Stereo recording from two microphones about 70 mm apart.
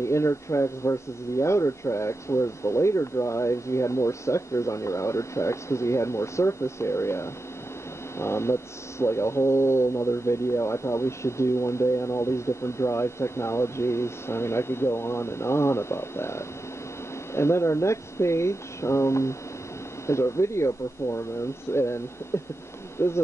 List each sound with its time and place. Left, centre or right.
0.0 s speech: left